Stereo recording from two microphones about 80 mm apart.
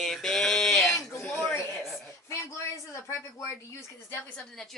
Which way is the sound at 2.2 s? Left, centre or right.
Left.